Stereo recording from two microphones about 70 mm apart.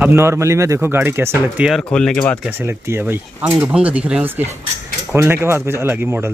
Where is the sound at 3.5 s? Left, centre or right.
Centre.